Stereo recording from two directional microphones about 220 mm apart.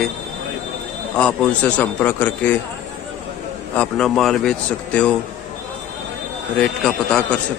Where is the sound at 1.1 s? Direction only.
5° left (ahead or behind).